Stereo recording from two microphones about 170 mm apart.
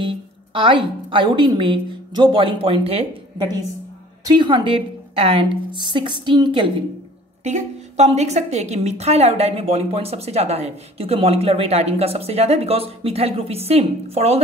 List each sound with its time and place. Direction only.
0.0 s a woman's voice: 30° right (ahead or behind)
7.4 s a woman's voice: 40° right (ahead or behind)